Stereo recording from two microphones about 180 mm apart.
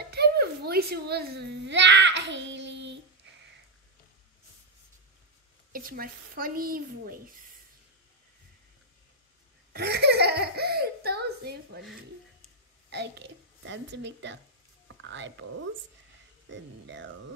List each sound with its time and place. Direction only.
0.1 s speech: 60° right (ahead or behind); by 3.0 s 80° right
5.7 s speech: 55° right (ahead or behind)
9.7 s belly laugh: 65° right (ahead or behind)
12.9 s a woman's voice: 70° right (ahead or behind)
15.0 s a sound: 85° right
16.4 s speech: 85° right